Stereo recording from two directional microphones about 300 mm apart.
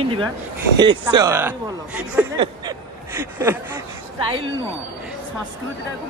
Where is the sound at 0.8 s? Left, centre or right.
Centre.